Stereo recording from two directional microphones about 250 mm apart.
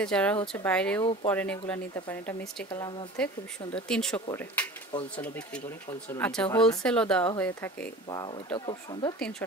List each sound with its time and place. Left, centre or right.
0.0 s speech: centre